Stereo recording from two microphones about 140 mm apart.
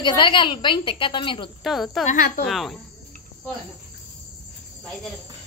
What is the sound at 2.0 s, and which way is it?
Speech, 85° left.